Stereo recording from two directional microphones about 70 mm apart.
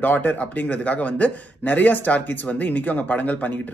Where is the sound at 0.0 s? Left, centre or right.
Left.